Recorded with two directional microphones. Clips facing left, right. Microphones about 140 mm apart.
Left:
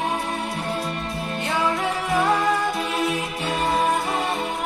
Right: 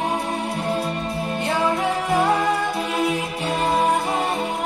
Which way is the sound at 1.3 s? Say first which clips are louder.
Right 2 dB; 15° right (ahead or behind).